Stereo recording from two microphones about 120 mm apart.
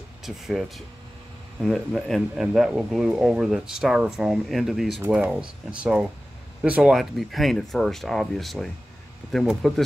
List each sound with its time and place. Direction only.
0.2 s speech: centre (ahead or behind)